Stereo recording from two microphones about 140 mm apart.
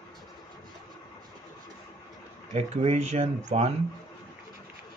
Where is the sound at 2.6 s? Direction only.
50° right (ahead or behind).